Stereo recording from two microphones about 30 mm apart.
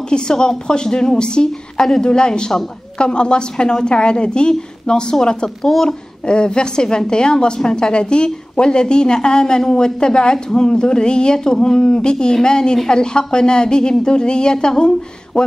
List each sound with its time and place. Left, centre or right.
0.3 s a woman's voice: left
5.6 s a woman's voice: centre
5.9 s a woman's voice: left